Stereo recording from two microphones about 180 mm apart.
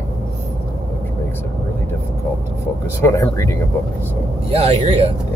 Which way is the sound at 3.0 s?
15° left (ahead or behind).